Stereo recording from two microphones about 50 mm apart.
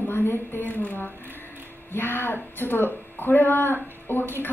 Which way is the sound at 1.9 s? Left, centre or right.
Left.